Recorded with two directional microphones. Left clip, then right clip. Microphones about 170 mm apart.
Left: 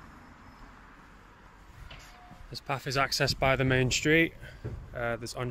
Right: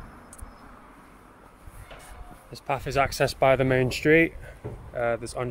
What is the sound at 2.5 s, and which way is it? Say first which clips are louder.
Speech: right 5 dB; centre (ahead or behind).